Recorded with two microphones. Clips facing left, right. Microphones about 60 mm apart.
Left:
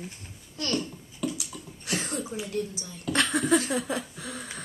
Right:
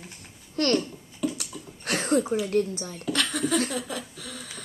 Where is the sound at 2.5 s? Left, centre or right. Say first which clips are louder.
Right 7 dB; right.